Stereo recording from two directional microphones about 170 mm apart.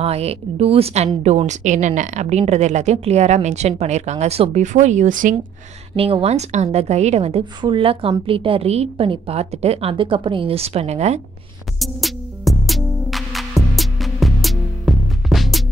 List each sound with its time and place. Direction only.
0.0 s a woman's voice: 35° right (ahead or behind)
5.9 s a woman's voice: 35° right (ahead or behind)
11.8 s music: centre (ahead or behind)